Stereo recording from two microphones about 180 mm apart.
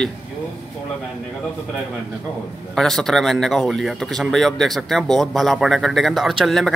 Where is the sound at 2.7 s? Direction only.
5° left (ahead or behind).